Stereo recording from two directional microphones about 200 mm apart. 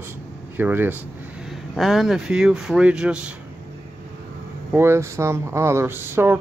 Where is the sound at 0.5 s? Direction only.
10° right (ahead or behind).